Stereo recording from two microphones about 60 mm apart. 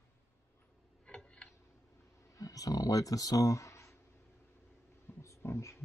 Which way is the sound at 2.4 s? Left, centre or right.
Left.